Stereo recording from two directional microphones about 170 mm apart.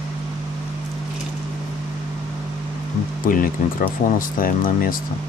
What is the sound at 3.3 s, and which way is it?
Speech, 55° left (ahead or behind).